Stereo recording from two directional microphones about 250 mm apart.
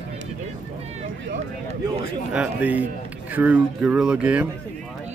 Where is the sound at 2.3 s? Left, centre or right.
Centre.